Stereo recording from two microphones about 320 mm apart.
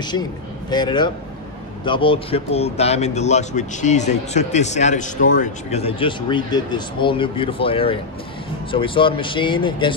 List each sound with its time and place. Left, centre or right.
0.1 s a man's voice: centre